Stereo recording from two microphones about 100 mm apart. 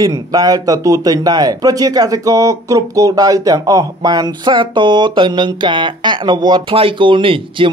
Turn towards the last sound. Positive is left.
turn(degrees=-60)  # may be behind; listen again after turning